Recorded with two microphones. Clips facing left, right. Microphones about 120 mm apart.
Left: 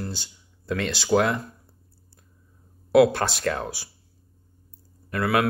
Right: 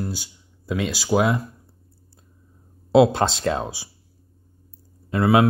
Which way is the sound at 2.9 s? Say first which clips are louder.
Right 2 dB; 20° right (ahead or behind).